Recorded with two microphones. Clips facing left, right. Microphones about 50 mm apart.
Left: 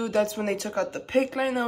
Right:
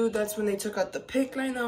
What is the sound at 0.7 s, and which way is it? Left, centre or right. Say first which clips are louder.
Speech: left 3 dB; left.